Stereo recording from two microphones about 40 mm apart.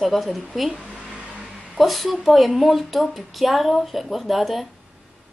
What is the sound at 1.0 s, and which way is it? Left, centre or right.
Vehicle, right.